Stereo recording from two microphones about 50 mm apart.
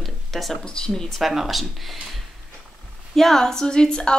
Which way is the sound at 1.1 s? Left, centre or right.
Centre.